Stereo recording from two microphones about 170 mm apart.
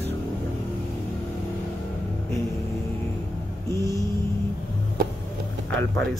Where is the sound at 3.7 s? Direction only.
20° right (ahead or behind).